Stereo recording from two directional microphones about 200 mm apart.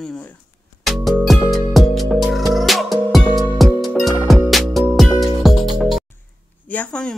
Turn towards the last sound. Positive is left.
turn(degrees=5)  # may be behind; listen again after turning